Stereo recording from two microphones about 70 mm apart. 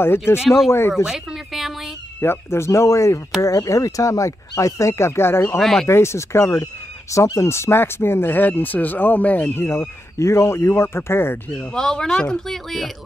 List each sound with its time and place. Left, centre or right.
0.3 s speech: left
0.9 s a sound: centre
2.1 s speech: left
5.6 s speech: centre
5.9 s speech: left
6.6 s speech: left
9.7 s speech: left
11.7 s speech: centre